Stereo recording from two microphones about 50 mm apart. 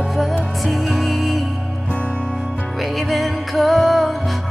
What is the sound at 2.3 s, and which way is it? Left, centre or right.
Music, centre.